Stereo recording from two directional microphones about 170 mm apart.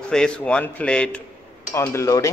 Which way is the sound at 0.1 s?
5° left (ahead or behind).